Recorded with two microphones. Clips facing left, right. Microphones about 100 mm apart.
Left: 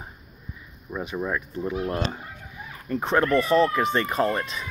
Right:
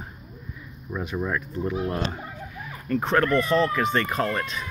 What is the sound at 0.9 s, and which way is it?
Speech, 10° left (ahead or behind).